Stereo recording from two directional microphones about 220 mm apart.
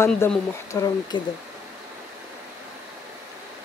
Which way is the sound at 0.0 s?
10° left (ahead or behind).